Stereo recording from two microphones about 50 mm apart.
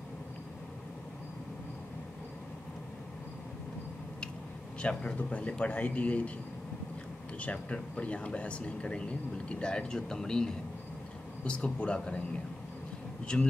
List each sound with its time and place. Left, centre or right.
4.8 s speech: left
7.3 s speech: left
13.3 s speech: centre